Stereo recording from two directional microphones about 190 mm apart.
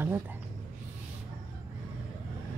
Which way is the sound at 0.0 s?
10° right (ahead or behind).